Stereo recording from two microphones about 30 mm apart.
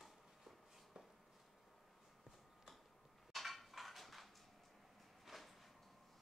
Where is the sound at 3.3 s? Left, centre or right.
Centre.